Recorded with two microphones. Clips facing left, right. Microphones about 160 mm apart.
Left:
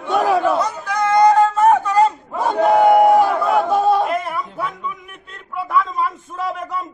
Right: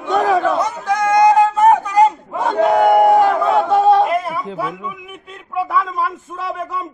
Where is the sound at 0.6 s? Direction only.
20° right (ahead or behind).